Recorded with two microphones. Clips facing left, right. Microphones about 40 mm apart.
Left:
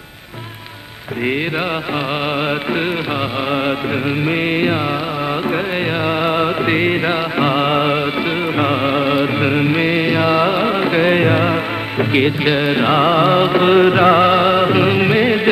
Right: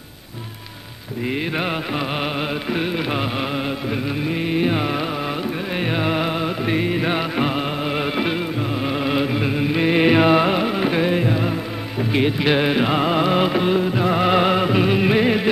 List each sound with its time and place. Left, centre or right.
4.3 s music: left
5.9 s music: centre
6.3 s music: left
7.0 s music: left
7.5 s music: left
8.0 s music: centre
8.8 s music: left
9.9 s music: centre
10.6 s carnatic music: left
11.1 s music: left
12.4 s music: centre
12.8 s music: left
13.6 s music: left
14.2 s music: centre